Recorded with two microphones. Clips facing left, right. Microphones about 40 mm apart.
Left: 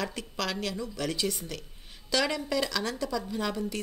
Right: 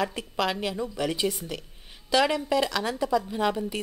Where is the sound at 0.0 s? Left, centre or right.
Centre.